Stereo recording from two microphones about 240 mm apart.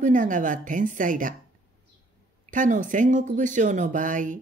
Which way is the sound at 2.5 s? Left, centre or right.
Right.